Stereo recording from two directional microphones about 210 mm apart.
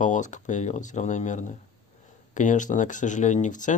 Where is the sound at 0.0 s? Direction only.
35° left (ahead or behind).